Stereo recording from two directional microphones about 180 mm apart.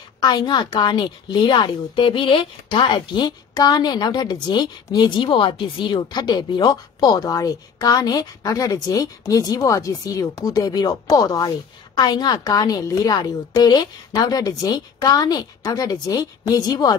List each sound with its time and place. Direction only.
0.2 s a woman's voice: 25° left (ahead or behind)